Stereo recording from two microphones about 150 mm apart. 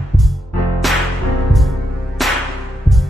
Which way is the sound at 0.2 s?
Centre (ahead or behind).